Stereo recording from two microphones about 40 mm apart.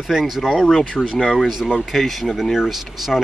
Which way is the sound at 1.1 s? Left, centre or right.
Centre.